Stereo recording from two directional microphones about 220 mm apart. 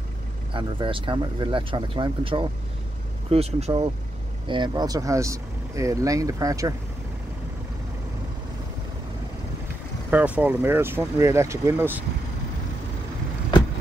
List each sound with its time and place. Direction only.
0.5 s speech: 20° right (ahead or behind)
10.1 s speech: 5° right (ahead or behind)